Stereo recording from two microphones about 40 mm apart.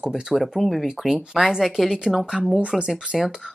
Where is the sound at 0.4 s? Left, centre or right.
Centre.